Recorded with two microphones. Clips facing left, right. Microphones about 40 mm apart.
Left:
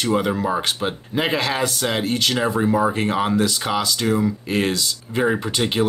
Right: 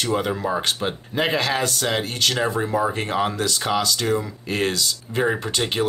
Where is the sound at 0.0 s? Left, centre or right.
Centre.